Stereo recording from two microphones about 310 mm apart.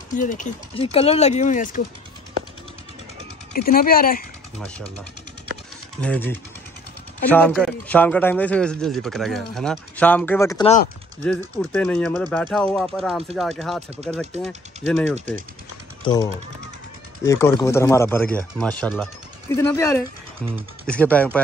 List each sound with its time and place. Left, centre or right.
0.1 s speech: left
3.6 s speech: left
4.6 s speech: centre
5.9 s speech: centre
11.7 s speech: centre
15.1 s speech: right
16.0 s speech: centre